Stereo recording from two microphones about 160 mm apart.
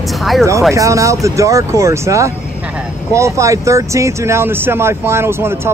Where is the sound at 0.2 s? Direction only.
Centre (ahead or behind).